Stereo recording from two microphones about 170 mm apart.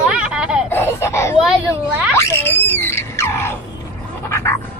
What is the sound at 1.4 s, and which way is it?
Speech, 5° right (ahead or behind).